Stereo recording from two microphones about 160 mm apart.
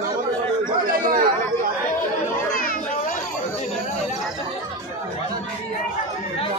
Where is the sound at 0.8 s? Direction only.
60° right (ahead or behind).